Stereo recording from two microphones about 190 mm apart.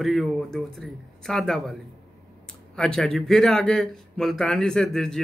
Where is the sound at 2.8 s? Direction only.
Centre (ahead or behind).